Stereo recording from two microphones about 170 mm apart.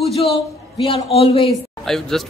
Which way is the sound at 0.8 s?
35° left (ahead or behind).